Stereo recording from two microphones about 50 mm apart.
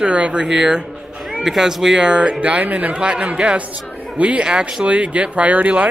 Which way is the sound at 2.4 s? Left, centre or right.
Right.